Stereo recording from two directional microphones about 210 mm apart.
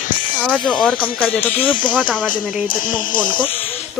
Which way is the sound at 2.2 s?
40° left (ahead or behind).